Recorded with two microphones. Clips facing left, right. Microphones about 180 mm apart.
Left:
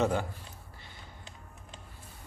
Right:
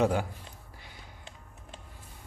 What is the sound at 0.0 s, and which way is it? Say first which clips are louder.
Speech: right 2 dB; 10° right (ahead or behind).